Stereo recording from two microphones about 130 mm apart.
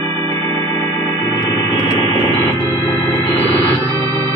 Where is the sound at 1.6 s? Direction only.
30° left (ahead or behind).